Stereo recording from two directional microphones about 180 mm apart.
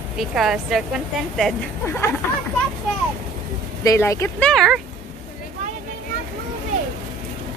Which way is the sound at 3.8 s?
15° left (ahead or behind).